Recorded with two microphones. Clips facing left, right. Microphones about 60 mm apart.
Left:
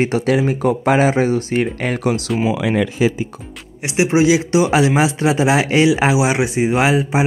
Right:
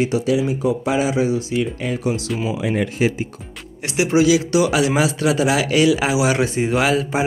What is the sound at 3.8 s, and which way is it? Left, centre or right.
Speech, left.